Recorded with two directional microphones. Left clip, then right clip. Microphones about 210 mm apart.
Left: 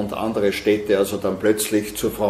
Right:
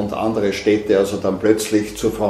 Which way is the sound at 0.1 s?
35° left (ahead or behind).